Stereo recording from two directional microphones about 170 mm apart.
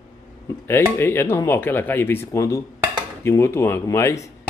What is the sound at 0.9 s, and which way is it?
Speech, 15° left (ahead or behind).